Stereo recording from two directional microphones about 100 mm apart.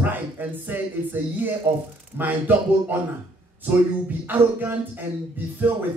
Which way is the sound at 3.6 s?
20° right (ahead or behind).